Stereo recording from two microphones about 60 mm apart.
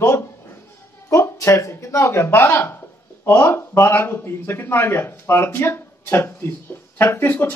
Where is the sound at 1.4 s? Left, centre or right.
Left.